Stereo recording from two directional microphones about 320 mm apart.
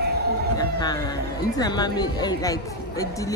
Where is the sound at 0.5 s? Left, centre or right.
Centre.